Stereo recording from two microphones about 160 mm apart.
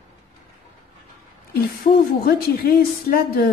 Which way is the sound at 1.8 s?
70° left (ahead or behind).